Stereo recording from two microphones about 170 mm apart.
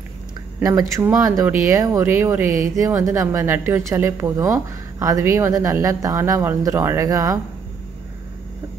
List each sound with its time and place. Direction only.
0.6 s speech: 20° right (ahead or behind)